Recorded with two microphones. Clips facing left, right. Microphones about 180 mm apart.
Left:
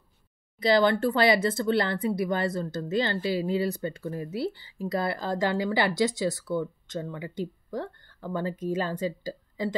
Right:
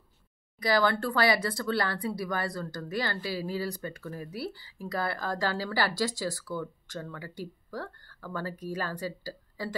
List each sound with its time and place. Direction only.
0.6 s speech: 25° left (ahead or behind)